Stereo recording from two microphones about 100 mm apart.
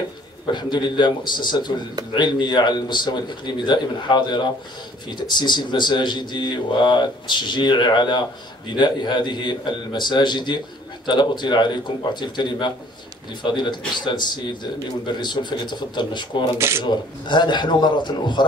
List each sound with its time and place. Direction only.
0.5 s a man's voice: 50° left (ahead or behind)
16.5 s speech: 25° right (ahead or behind)
16.8 s a man's voice: 50° left (ahead or behind)